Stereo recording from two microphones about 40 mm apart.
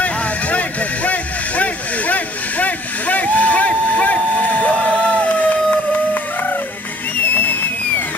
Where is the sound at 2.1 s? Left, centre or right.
Left.